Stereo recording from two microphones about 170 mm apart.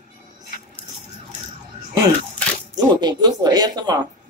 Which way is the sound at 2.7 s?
25° right (ahead or behind).